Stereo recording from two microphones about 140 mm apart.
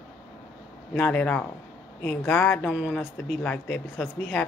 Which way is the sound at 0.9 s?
10° left (ahead or behind).